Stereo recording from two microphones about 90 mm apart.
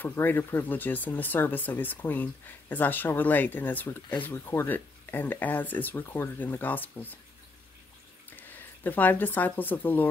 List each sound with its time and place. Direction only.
0.0 s speech: 20° left (ahead or behind)
8.4 s speech: 20° left (ahead or behind)